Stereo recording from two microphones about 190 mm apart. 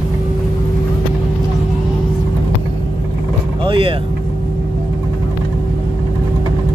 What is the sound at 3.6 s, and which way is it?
Vehicle, 25° right (ahead or behind).